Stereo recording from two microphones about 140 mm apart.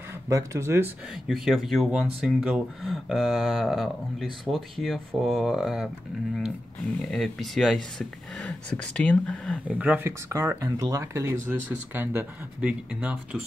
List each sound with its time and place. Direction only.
0.1 s speech: 20° right (ahead or behind)
1.2 s speech: centre (ahead or behind)
7.1 s speech: centre (ahead or behind)
9.7 s speech: 10° right (ahead or behind)